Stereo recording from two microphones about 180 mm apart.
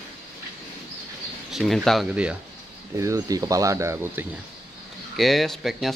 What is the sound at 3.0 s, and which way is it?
Speech, 15° right (ahead or behind).